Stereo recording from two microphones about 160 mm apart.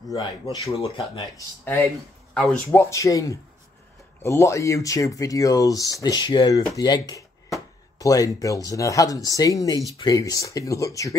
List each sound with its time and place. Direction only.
0.1 s speech: 25° left (ahead or behind)
0.7 s speech: 40° left (ahead or behind)
1.6 s speech: 10° left (ahead or behind)